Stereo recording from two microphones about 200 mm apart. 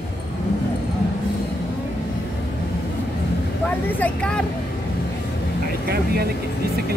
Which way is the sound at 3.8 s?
10° left (ahead or behind).